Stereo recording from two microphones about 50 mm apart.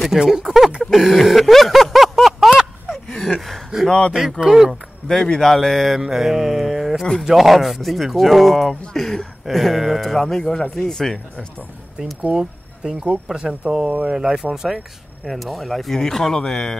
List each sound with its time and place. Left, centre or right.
0.0 s speech: centre
0.9 s a sound: centre
3.7 s a sound: centre
4.4 s speech: centre
5.0 s speech: centre
8.9 s speech: centre
12.2 s speech: centre
15.2 s speech: centre